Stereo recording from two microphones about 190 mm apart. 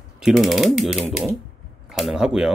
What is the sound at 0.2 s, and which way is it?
Speech, centre (ahead or behind).